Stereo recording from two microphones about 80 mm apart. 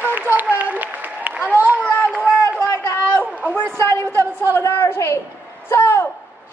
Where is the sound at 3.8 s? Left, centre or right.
Left.